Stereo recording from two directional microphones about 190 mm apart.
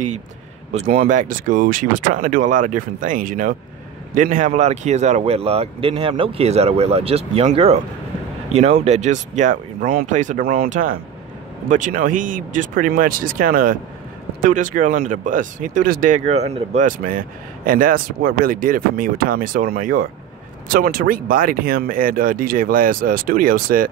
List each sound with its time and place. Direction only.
0.7 s speech: 45° right (ahead or behind)